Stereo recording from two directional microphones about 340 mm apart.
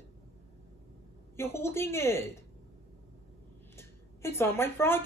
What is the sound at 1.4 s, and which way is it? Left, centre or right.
Speech, centre.